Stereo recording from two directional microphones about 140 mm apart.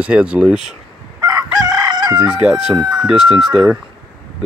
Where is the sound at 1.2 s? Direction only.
25° right (ahead or behind).